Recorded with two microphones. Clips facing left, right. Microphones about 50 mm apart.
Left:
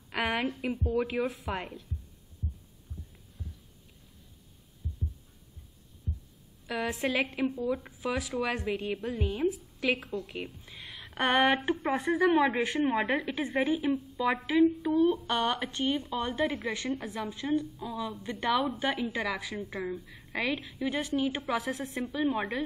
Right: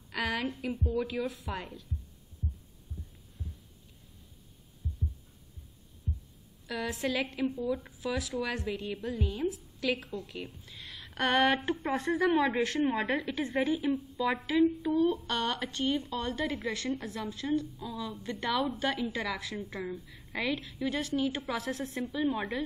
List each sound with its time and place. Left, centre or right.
0.1 s a sound: left
0.6 s speech: left
6.7 s a woman's voice: left
10.2 s a sound: centre
11.1 s a woman's voice: left
11.9 s a woman's voice: centre
15.2 s a woman's voice: centre